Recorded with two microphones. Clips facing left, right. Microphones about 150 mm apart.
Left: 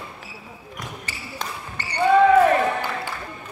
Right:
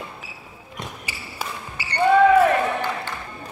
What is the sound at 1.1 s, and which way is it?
Basketball bounce, 10° right (ahead or behind).